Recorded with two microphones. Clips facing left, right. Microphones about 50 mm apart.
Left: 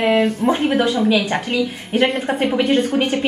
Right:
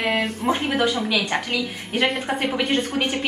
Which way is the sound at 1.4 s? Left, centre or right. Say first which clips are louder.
Left 5 dB; left.